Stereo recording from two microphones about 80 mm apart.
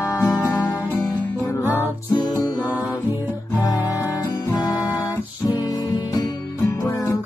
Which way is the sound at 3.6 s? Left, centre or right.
Left.